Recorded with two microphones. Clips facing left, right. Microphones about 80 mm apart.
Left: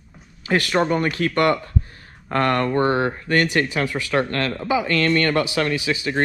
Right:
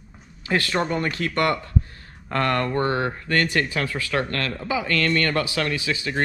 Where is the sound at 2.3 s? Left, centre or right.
Left.